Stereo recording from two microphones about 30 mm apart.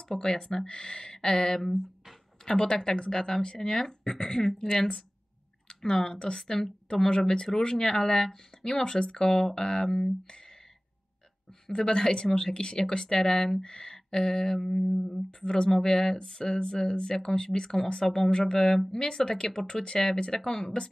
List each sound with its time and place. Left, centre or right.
0.2 s speech: centre
0.7 s speech: left
1.1 s speech: centre
8.9 s speech: left
9.2 s speech: centre
11.7 s speech: left
15.0 s speech: centre
15.4 s speech: left; by 18.3 s centre
18.5 s speech: centre